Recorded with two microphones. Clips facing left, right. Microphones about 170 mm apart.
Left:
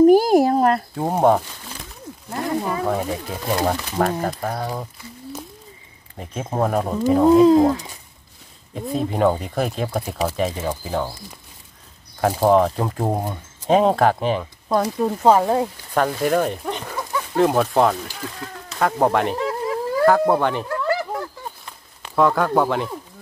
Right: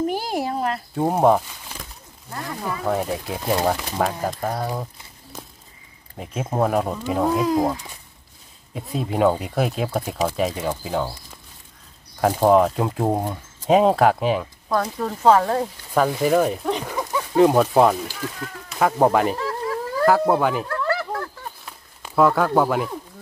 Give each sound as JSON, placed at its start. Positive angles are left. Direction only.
{"t": 0.0, "sound": "a sound", "side_deg": 45}
{"t": 0.9, "sound": "speech", "side_deg": 0}
{"t": 2.9, "sound": "speech", "side_deg": 0}
{"t": 6.1, "sound": "speech", "side_deg": -5}
{"t": 7.2, "sound": "speech", "side_deg": 25}
{"t": 8.7, "sound": "speech", "side_deg": -5}
{"t": 12.2, "sound": "speech", "side_deg": 0}
{"t": 14.7, "sound": "speech", "side_deg": 20}
{"t": 15.9, "sound": "speech", "side_deg": -5}
{"t": 19.3, "sound": "a sound", "side_deg": 20}
{"t": 20.1, "sound": "speech", "side_deg": -5}
{"t": 20.6, "sound": "a sound", "side_deg": 15}
{"t": 21.6, "sound": "a sound", "side_deg": -5}